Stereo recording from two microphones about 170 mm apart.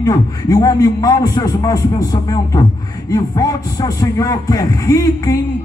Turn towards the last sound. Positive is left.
turn(degrees=20)  # may be behind; listen again after turning